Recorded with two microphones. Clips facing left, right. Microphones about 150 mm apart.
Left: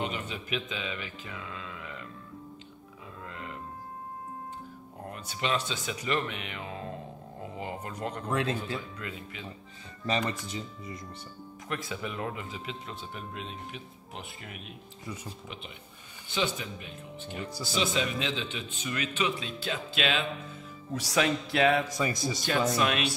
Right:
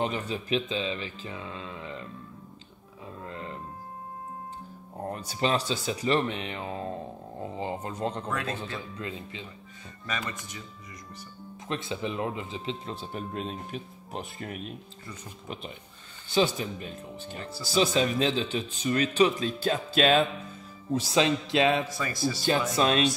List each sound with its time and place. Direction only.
0.0 s a man's voice: 35° right (ahead or behind)
3.2 s music: 30° right (ahead or behind)
5.0 s a man's voice: 35° right (ahead or behind)
8.3 s speech: 25° left (ahead or behind)
8.7 s speech: 25° right (ahead or behind)
10.0 s speech: 30° left (ahead or behind)
11.6 s a man's voice: 25° right (ahead or behind)
17.4 s speech: 15° left (ahead or behind)
17.6 s a man's voice: 40° right (ahead or behind)
20.9 s speech: 25° right (ahead or behind)
21.8 s speech: 20° left (ahead or behind)
22.8 s a man's voice: 30° right (ahead or behind)